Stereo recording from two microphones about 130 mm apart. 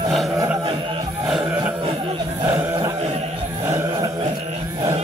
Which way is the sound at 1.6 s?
40° right (ahead or behind).